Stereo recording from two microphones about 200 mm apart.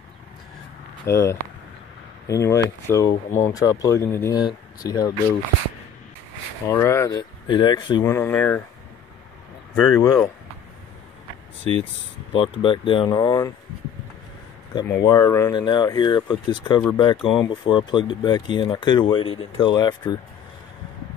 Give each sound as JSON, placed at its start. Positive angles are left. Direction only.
{"t": 1.0, "sound": "speech", "side_deg": 15}
{"t": 6.7, "sound": "speech", "side_deg": 15}
{"t": 8.1, "sound": "speech", "side_deg": 10}
{"t": 9.9, "sound": "speech", "side_deg": 20}
{"t": 12.3, "sound": "speech", "side_deg": 25}
{"t": 14.7, "sound": "speech", "side_deg": 20}
{"t": 17.2, "sound": "speech", "side_deg": 0}
{"t": 17.5, "sound": "speech", "side_deg": 25}